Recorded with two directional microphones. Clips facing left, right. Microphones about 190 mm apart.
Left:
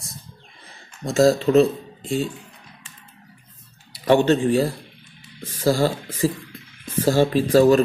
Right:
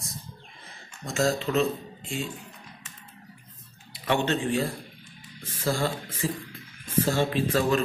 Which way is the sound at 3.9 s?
35° left (ahead or behind).